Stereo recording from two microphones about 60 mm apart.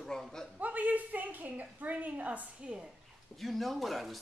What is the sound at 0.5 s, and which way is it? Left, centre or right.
A woman's voice, right.